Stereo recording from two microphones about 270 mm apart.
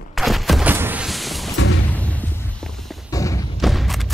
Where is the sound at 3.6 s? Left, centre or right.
Centre.